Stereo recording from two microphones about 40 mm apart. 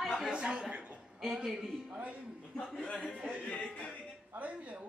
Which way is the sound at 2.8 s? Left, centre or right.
Left.